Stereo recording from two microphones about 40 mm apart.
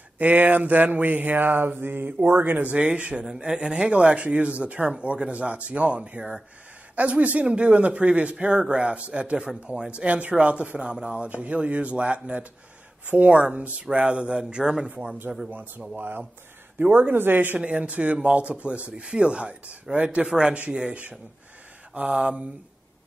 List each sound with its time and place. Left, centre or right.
0.2 s speech: right
2.6 s speech: right
3.3 s speech: centre
11.2 s speech: right; by 14.9 s centre
15.5 s speech: right
16.8 s speech: right
17.6 s speech: right
20.2 s speech: centre
22.1 s speech: right